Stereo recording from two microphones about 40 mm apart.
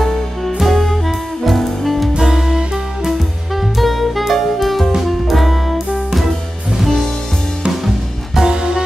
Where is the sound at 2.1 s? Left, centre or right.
Centre.